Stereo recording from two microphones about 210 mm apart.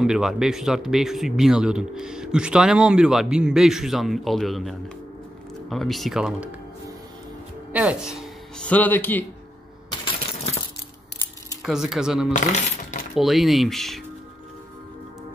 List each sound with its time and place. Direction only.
0.0 s speech: centre (ahead or behind)
7.7 s speech: 5° right (ahead or behind)
9.8 s coin: 25° left (ahead or behind)
11.6 s speech: centre (ahead or behind)
12.3 s speech: 35° left (ahead or behind)
13.1 s speech: centre (ahead or behind)